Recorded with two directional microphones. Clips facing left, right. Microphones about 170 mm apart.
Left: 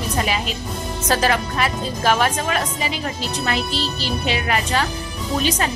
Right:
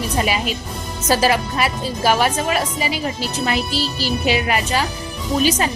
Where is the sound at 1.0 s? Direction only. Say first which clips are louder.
Right 3 dB; 10° right (ahead or behind).